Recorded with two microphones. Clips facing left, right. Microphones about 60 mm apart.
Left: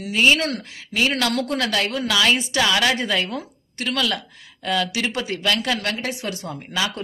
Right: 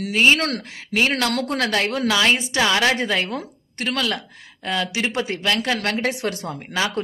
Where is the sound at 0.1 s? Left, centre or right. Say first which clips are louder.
Right 1 dB; right.